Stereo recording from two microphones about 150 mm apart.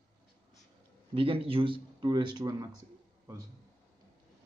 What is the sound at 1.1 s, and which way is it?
A man's voice, 40° right (ahead or behind).